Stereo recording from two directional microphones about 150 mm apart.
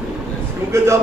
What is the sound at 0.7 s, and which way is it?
Speech, 20° right (ahead or behind).